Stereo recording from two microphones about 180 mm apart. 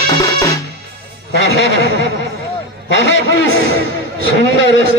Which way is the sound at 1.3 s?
75° left (ahead or behind).